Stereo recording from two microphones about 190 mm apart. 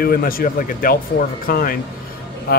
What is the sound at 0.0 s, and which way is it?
Speech, 50° left (ahead or behind).